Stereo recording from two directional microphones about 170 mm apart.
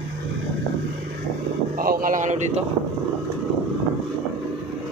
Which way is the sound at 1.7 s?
55° right (ahead or behind).